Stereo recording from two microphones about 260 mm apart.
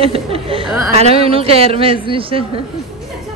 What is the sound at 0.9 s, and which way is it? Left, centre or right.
A woman's voice, right.